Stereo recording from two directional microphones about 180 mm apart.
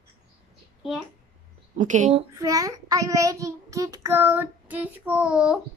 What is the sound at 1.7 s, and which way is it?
Speech, 45° right (ahead or behind).